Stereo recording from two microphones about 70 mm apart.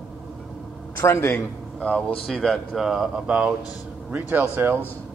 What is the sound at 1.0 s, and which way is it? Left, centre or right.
Speech, left.